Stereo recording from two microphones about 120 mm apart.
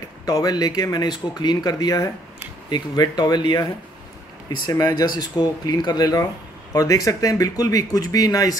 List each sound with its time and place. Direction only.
0.2 s speech: 30° left (ahead or behind)
4.6 s speech: 30° left (ahead or behind)